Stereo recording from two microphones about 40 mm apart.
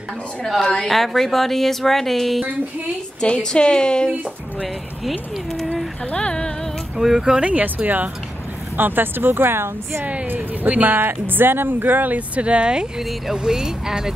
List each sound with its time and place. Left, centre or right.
0.8 s speech: centre
3.2 s a woman's voice: left
6.1 s a woman's voice: left
7.0 s speech: centre
7.4 s speech: right
8.7 s speech: right
10.7 s speech: right
12.4 s speech: right
13.3 s speech: centre